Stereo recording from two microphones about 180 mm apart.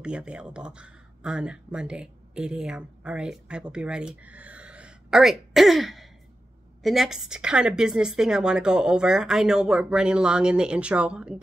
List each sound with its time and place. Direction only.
0.0 s a woman's voice: 5° right (ahead or behind)